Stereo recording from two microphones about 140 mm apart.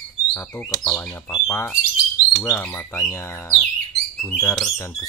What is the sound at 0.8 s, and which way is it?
Speech, 15° left (ahead or behind).